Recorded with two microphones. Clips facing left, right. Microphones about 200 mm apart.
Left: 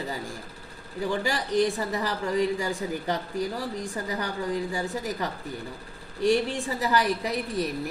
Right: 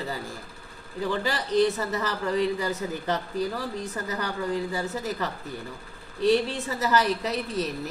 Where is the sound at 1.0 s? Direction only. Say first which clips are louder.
Even; 15° left (ahead or behind).